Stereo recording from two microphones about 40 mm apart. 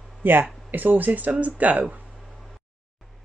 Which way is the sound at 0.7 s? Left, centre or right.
Right.